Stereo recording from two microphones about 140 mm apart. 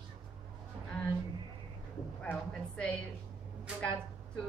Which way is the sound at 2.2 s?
10° left (ahead or behind).